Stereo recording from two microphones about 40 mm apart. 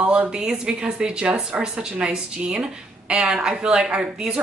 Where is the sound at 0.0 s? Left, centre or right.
Right.